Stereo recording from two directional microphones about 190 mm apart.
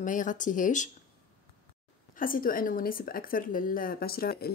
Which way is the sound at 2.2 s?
45° left (ahead or behind).